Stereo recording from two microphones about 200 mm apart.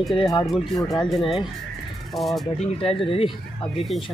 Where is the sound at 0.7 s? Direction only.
20° left (ahead or behind).